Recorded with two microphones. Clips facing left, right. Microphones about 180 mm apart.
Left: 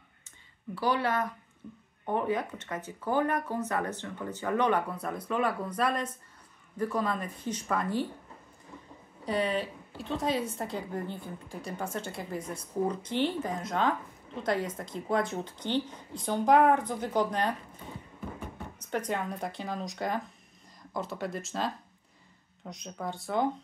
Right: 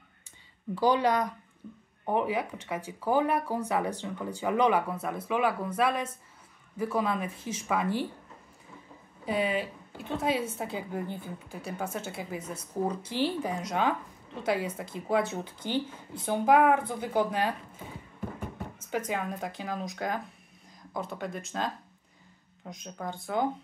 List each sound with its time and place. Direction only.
0.7 s a woman's voice: 15° right (ahead or behind)
9.2 s a woman's voice: 5° right (ahead or behind)
18.9 s a woman's voice: 5° right (ahead or behind)